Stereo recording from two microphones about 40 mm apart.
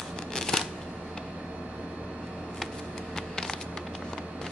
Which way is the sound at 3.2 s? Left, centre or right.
Centre.